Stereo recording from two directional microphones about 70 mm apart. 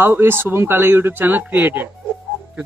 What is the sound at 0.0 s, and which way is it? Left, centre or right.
Speech, right.